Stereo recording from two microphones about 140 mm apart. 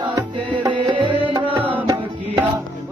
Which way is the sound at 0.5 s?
35° right (ahead or behind).